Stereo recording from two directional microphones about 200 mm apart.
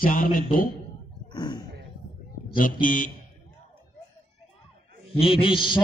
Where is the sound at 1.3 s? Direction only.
20° left (ahead or behind).